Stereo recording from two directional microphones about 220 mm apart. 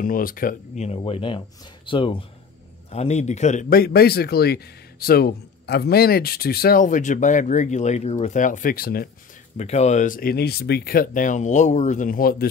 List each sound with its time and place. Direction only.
0.0 s a man's voice: 40° left (ahead or behind)
9.6 s speech: 30° left (ahead or behind)